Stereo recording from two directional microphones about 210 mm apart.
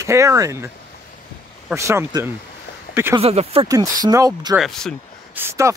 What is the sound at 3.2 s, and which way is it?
Speech, 30° right (ahead or behind).